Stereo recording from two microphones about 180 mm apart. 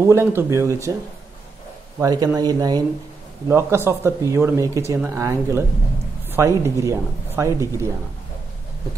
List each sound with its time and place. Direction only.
0.0 s speech: 15° right (ahead or behind)
2.0 s speech: 20° right (ahead or behind)